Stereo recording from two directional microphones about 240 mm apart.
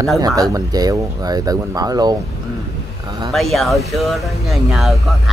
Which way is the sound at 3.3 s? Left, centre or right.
Centre.